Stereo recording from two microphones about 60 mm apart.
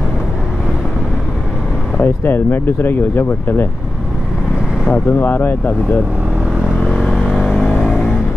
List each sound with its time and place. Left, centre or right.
2.0 s speech: left
4.9 s speech: left
7.0 s vehicle: centre